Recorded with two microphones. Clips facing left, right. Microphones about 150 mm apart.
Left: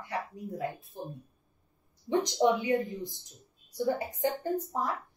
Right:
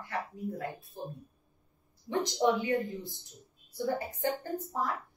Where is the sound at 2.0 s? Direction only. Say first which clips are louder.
Left 2 dB; 20° left (ahead or behind).